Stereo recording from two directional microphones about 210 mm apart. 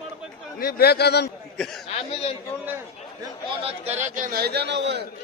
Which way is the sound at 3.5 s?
30° right (ahead or behind).